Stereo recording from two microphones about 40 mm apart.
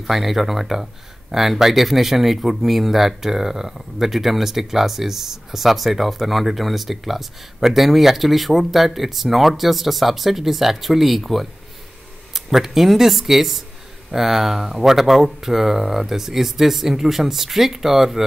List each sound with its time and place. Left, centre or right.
0.0 s speech: centre